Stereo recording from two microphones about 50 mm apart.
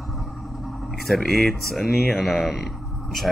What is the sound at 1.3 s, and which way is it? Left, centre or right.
Speech, centre.